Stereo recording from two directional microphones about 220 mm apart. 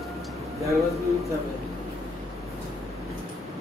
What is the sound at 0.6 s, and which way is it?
Speech, 15° right (ahead or behind).